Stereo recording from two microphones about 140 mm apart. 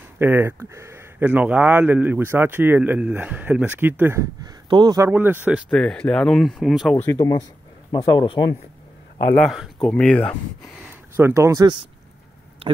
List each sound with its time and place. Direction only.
0.2 s speech: 15° right (ahead or behind)
4.6 s speech: 35° right (ahead or behind)
4.9 s speech: 20° right (ahead or behind)
5.7 s speech: 5° left (ahead or behind)
7.1 s speech: 25° left (ahead or behind)
9.4 s speech: centre (ahead or behind)
11.1 s speech: 20° right (ahead or behind)